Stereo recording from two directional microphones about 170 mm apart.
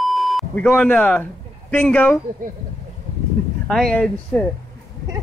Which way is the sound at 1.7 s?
10° left (ahead or behind).